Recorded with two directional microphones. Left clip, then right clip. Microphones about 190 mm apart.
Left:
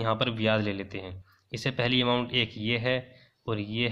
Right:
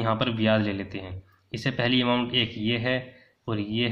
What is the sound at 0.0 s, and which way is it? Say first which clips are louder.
Speech: right 2 dB; 30° left (ahead or behind).